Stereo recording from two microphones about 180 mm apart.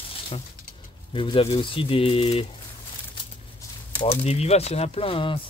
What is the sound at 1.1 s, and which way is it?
Speech, 30° left (ahead or behind).